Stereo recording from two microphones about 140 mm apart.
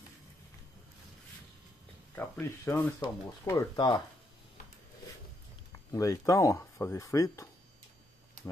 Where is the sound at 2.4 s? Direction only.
15° left (ahead or behind).